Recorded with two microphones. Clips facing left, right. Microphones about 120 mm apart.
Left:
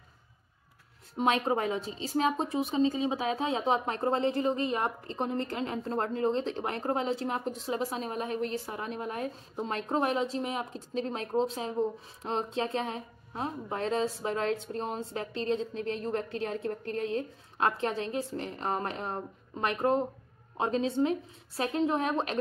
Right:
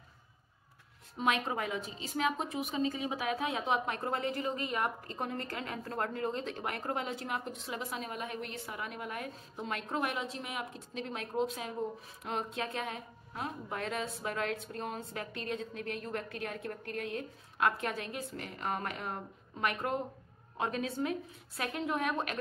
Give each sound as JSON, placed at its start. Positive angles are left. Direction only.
{"t": 1.1, "sound": "a woman's voice", "side_deg": 30}